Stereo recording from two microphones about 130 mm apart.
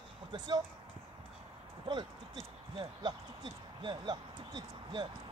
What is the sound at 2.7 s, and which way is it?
Speech, 35° right (ahead or behind).